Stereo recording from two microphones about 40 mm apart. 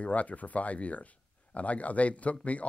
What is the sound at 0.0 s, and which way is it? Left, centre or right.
Speech, left.